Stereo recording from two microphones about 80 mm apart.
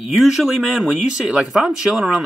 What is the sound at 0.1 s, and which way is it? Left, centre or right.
Speech, centre.